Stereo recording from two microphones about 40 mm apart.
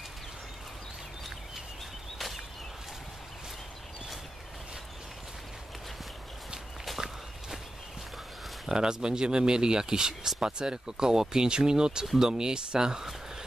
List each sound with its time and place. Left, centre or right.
7.0 s walk: centre
8.6 s speech: centre